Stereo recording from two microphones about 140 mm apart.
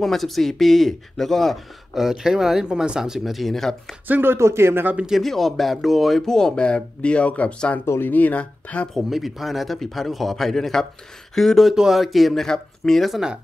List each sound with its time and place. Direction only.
0.0 s speech: centre (ahead or behind)
4.1 s speech: 15° right (ahead or behind)